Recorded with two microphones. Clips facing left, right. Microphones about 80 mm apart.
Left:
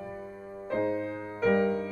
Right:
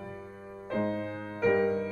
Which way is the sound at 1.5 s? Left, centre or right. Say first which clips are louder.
Left 1 dB; centre.